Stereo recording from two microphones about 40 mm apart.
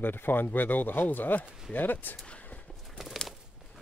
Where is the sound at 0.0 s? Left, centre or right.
Left.